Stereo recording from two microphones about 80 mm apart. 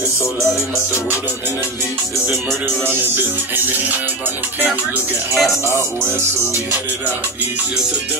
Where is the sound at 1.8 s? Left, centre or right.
Right.